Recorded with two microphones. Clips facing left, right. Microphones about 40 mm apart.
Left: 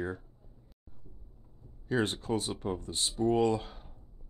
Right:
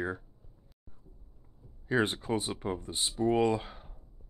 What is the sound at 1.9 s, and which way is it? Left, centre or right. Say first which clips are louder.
Speech: right 1 dB; centre.